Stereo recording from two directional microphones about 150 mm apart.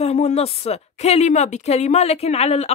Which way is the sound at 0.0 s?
45° left (ahead or behind).